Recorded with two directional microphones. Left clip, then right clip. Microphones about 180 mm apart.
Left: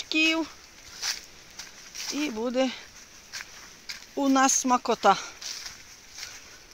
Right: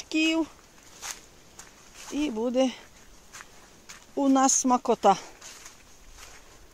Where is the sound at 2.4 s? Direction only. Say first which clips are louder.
Right 2 dB; 25° right (ahead or behind).